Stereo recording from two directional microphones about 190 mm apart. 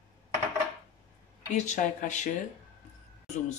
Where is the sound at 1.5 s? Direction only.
40° left (ahead or behind).